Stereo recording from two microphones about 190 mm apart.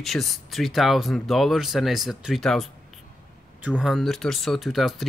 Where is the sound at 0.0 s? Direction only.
Centre (ahead or behind).